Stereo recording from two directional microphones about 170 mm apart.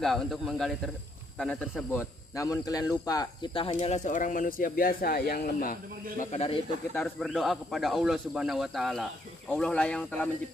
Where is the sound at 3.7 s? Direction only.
45° left (ahead or behind).